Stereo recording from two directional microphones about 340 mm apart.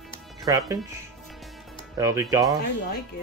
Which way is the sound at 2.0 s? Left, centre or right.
Centre.